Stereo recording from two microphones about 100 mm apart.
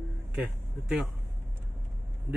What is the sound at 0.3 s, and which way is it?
Speech, 10° right (ahead or behind).